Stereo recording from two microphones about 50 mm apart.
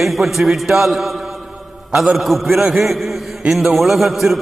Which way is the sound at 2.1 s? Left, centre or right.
Centre.